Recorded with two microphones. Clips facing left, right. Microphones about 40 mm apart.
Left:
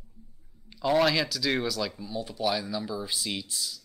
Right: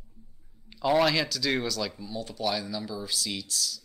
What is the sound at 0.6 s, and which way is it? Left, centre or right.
Speech, centre.